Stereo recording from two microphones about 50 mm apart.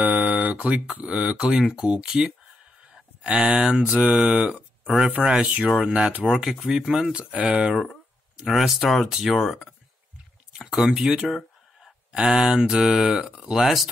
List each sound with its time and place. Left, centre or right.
0.0 s a sound: right
1.0 s speech: right
1.4 s speech: centre
4.0 s speech: right
4.9 s speech: centre
5.2 s speech: right
6.4 s speech: centre; by 7.7 s right
8.5 s speech: centre
10.6 s a sound: centre
11.0 s speech: centre
12.9 s speech: right
13.5 s speech: centre